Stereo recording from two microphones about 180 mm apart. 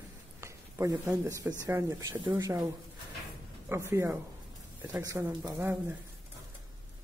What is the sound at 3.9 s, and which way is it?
Speech, 15° right (ahead or behind).